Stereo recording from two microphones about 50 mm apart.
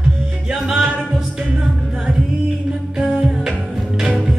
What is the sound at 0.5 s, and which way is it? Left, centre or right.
Music, centre.